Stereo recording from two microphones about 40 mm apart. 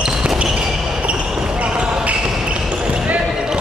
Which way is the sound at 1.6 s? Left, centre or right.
Right.